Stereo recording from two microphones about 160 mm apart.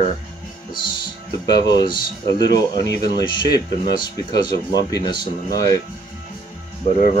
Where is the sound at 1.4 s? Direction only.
25° left (ahead or behind).